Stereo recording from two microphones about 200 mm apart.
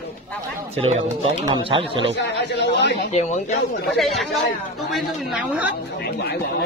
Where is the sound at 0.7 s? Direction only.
30° right (ahead or behind).